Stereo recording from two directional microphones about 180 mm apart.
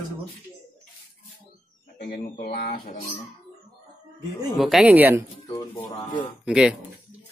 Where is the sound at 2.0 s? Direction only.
55° left (ahead or behind).